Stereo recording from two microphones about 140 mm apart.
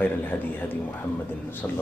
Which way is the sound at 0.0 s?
15° left (ahead or behind).